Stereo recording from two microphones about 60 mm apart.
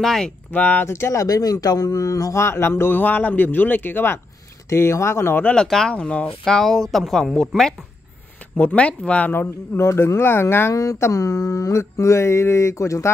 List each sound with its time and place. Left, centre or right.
0.0 s speech: centre
0.5 s speech: left
0.8 s speech: left
1.1 s speech: left
2.3 s a man's voice: left
4.6 s speech: left
5.4 s speech: centre
5.9 s speech: centre
8.5 s speech: left
9.3 s a man's voice: left
10.7 s speech: left
11.0 s mantra: left